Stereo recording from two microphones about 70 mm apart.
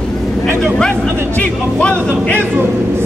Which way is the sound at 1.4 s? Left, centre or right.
Centre.